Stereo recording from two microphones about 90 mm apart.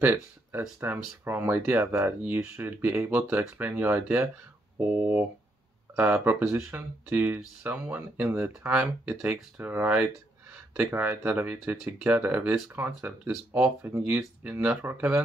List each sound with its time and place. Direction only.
0.0 s speech: 25° right (ahead or behind)